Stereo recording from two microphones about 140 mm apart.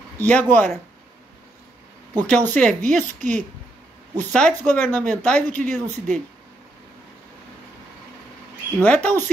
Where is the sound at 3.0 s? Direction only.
60° right (ahead or behind).